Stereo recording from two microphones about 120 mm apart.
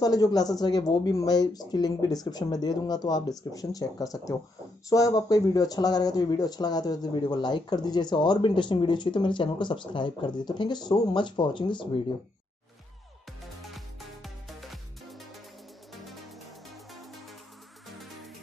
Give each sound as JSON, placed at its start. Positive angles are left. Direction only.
{"t": 0.0, "sound": "speech", "side_deg": 30}
{"t": 13.6, "sound": "music", "side_deg": 0}